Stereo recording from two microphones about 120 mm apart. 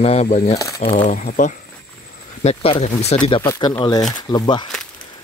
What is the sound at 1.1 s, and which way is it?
Speech, 90° left.